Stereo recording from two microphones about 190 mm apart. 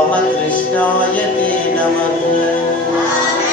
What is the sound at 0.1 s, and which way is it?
Music, 5° left (ahead or behind).